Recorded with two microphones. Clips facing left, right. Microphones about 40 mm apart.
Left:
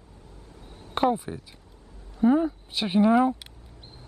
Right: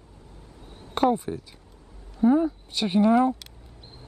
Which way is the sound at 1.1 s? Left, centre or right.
Centre.